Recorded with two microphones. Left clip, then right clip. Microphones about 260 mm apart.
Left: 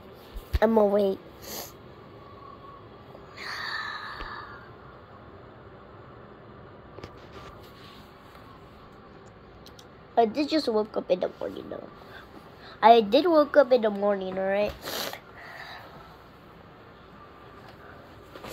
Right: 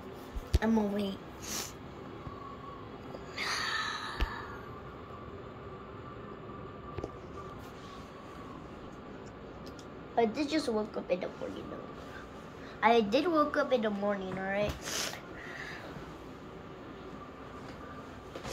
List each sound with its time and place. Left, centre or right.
0.6 s a woman's voice: centre
3.3 s a sound: centre
10.1 s a woman's voice: left
12.8 s a woman's voice: left